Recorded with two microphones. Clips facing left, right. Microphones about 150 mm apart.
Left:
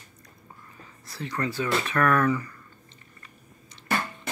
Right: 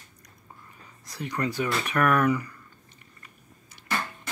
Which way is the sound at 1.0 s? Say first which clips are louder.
Right 1 dB; 15° right (ahead or behind).